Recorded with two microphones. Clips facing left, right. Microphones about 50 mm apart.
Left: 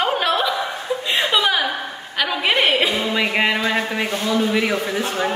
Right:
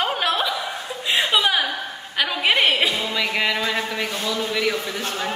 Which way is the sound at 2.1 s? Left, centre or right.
Centre.